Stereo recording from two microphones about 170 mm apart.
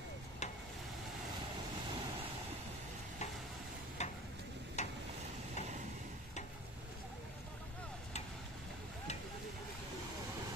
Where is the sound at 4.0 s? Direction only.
40° left (ahead or behind).